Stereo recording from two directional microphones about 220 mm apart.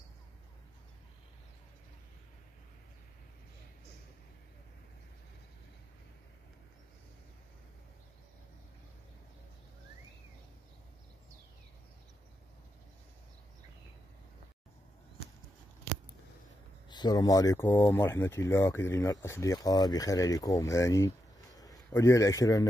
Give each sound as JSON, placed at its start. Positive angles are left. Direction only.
{"t": 16.9, "sound": "a man's voice", "side_deg": 20}